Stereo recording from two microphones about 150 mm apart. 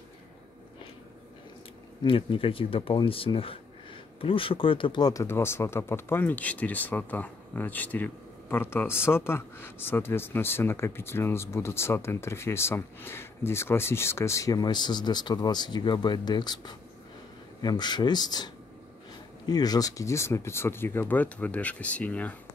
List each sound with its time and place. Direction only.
2.0 s speech: 35° left (ahead or behind); by 22.3 s 10° left (ahead or behind)